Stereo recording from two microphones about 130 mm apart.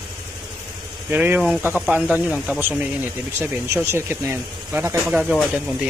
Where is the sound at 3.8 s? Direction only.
20° right (ahead or behind).